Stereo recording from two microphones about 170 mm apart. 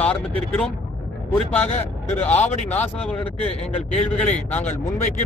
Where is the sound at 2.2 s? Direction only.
10° left (ahead or behind).